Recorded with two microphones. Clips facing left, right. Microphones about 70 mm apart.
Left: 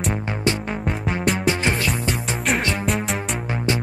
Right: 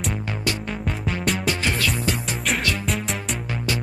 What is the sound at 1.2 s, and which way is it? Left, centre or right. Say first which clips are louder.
Music: left 4 dB; centre.